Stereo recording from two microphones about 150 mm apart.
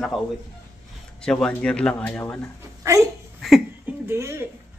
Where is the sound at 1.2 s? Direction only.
5° left (ahead or behind).